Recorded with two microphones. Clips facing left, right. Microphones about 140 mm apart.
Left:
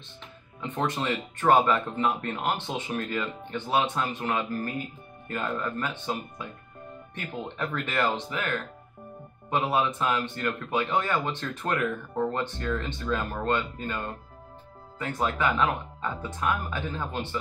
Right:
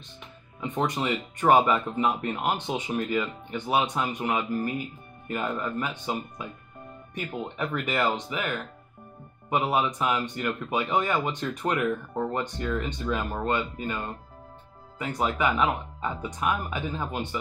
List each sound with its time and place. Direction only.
0.6 s speech: 10° right (ahead or behind)
16.0 s speech: 15° right (ahead or behind)